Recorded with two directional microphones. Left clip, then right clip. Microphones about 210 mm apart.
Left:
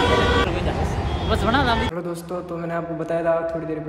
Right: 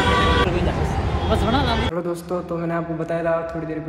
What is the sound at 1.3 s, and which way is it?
A man's voice, centre (ahead or behind).